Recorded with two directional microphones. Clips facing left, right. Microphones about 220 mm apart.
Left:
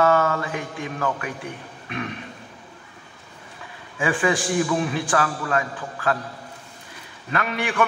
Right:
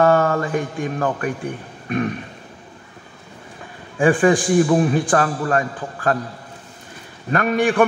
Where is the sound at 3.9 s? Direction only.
35° right (ahead or behind).